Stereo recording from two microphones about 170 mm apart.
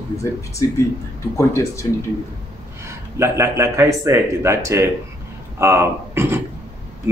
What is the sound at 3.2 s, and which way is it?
Speech, 15° right (ahead or behind).